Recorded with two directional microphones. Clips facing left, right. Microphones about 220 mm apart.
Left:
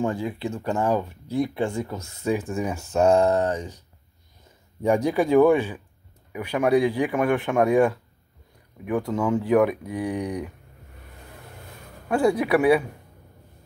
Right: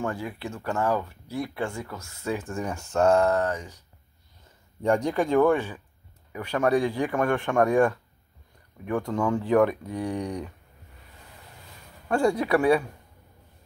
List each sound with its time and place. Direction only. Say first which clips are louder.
0.0 s speech: left 5 dB; 20° left (ahead or behind)
4.8 s speech: left 3 dB; 5° left (ahead or behind)
12.1 s speech: left 2 dB; 5° left (ahead or behind)